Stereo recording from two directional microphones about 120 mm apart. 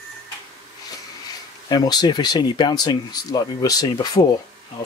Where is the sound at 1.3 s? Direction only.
35° left (ahead or behind).